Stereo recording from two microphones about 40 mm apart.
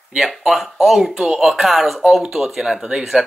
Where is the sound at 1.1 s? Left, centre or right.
Centre.